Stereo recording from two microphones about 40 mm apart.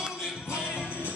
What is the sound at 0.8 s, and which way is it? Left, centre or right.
Music, right.